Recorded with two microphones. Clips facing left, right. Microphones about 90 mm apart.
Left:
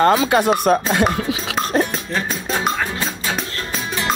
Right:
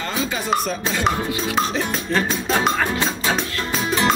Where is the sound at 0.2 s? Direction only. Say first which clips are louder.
Left 6 dB; 65° left (ahead or behind); by 1.0 s 50° left (ahead or behind).